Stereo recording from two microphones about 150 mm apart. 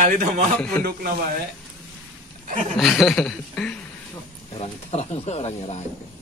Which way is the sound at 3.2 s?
5° left (ahead or behind).